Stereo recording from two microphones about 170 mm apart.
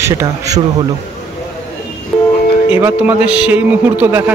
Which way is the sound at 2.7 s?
10° right (ahead or behind).